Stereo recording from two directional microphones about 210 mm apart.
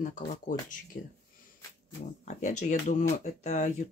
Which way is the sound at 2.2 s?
35° left (ahead or behind).